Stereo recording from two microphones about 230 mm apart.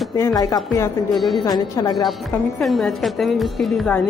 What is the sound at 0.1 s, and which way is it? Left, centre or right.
Speech, centre.